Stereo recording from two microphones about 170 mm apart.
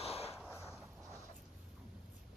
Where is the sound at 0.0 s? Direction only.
35° left (ahead or behind).